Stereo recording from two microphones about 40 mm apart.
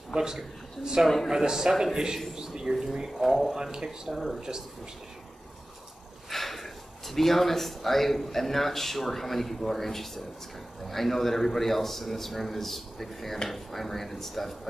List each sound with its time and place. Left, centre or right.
0.1 s a woman's voice: centre
1.0 s a man's voice: centre
1.3 s speech: centre
4.1 s a man's voice: centre
4.4 s speech: centre
6.3 s a man's voice: centre